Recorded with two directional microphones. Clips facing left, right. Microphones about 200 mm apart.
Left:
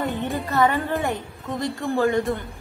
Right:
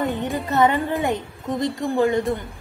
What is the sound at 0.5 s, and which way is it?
A woman's voice, 20° right (ahead or behind).